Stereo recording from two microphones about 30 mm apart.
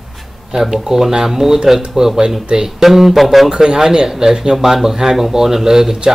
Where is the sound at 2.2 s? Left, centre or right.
Right.